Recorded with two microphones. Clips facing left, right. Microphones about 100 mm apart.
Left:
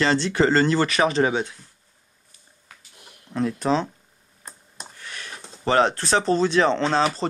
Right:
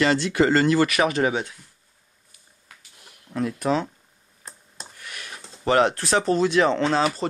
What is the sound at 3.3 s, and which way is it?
Speech, 30° left (ahead or behind).